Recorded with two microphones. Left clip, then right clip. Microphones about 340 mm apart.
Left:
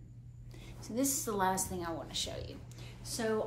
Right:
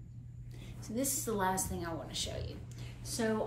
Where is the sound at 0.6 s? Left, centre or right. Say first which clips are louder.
Left 2 dB; centre.